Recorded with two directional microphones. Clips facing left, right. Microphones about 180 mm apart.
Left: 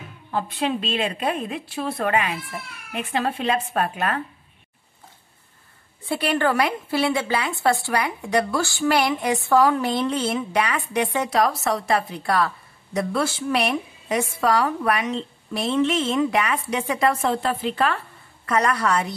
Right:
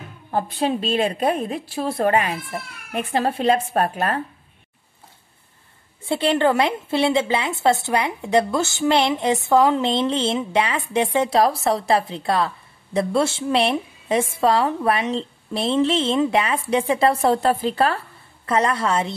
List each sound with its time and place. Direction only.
0.3 s a woman's voice: 40° right (ahead or behind)
6.0 s a woman's voice: 25° right (ahead or behind)